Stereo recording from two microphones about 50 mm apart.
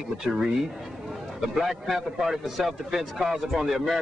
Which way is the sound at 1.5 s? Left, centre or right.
Centre.